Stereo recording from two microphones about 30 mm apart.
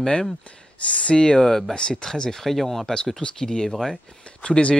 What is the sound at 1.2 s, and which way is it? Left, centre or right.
Speech, left.